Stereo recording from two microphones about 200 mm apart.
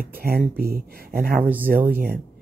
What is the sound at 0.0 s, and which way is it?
Speech, 50° right (ahead or behind).